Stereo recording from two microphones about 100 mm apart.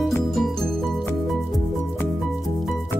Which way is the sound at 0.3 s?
Centre (ahead or behind).